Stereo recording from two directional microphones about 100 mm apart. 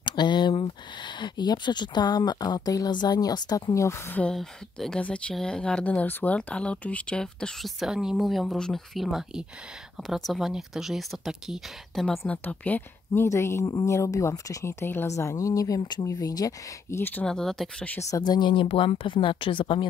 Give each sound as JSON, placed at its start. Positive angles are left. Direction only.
{"t": 0.0, "sound": "speech", "side_deg": 50}
{"t": 4.1, "sound": "speech", "side_deg": 10}
{"t": 7.8, "sound": "speech", "side_deg": -5}
{"t": 12.3, "sound": "speech", "side_deg": 15}
{"t": 14.7, "sound": "speech", "side_deg": 20}
{"t": 17.0, "sound": "speech", "side_deg": 15}
{"t": 17.3, "sound": "speech", "side_deg": 5}
{"t": 18.1, "sound": "speech", "side_deg": 45}
{"t": 18.7, "sound": "speech", "side_deg": 90}
{"t": 19.0, "sound": "a woman's voice", "side_deg": 55}